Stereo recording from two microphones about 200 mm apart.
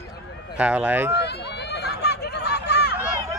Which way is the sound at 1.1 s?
55° left (ahead or behind).